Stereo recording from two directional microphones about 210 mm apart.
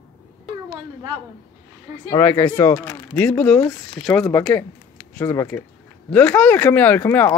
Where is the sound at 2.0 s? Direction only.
10° left (ahead or behind).